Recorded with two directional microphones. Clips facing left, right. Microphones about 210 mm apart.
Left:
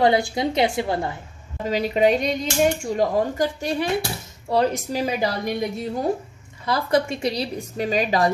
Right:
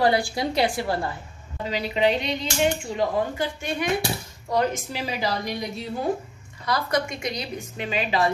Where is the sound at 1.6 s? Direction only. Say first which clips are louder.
Left 4 dB; 45° left (ahead or behind).